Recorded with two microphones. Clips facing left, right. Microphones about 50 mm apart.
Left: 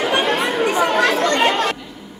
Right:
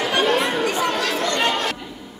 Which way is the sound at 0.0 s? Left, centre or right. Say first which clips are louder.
Left 1 dB; left.